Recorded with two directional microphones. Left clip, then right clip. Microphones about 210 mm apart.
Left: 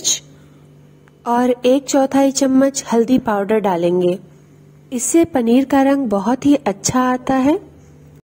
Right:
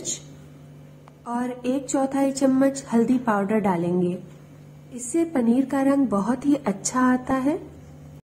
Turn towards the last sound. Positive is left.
turn(degrees=40)  # may be behind; listen again after turning